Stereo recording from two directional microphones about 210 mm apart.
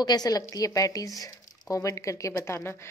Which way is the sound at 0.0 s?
20° left (ahead or behind).